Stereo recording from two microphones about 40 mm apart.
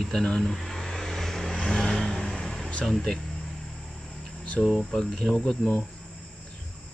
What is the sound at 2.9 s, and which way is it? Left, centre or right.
Speech, centre.